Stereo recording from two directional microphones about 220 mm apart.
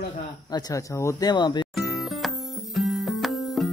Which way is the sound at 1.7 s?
Centre (ahead or behind).